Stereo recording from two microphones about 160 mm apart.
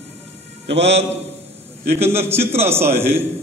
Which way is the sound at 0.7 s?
90° right.